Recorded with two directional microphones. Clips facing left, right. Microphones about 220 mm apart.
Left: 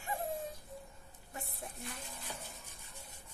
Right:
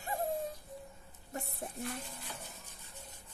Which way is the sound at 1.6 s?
45° right (ahead or behind).